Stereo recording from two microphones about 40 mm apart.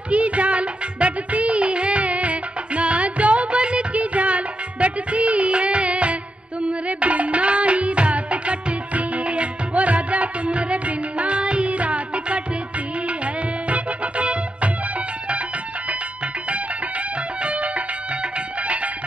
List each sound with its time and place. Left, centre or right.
0.1 s music: right
13.7 s music: right
17.4 s music: right